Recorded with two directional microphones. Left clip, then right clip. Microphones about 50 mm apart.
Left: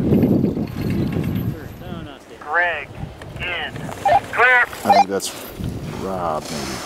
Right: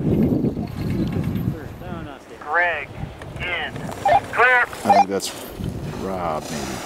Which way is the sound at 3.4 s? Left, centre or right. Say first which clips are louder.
Even; centre.